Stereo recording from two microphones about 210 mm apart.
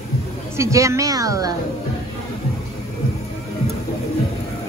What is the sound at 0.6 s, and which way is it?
Speech, 15° right (ahead or behind).